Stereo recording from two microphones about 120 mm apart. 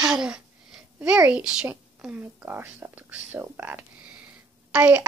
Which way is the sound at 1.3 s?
10° right (ahead or behind).